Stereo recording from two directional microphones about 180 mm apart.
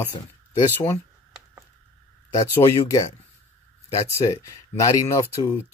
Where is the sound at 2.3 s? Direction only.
20° left (ahead or behind).